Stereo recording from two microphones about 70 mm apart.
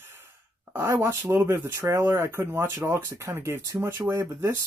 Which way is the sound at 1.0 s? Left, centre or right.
Right.